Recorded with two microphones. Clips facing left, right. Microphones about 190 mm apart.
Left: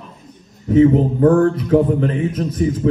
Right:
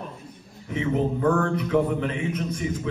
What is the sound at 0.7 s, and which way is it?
A man's voice, 40° left (ahead or behind).